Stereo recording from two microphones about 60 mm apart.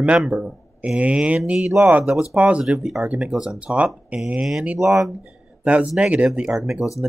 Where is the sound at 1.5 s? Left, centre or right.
Centre.